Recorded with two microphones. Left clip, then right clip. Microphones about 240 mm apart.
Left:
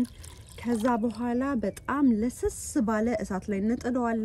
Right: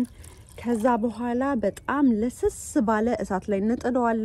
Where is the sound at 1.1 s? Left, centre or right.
Centre.